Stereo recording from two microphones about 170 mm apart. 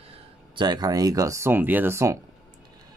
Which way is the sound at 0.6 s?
25° right (ahead or behind).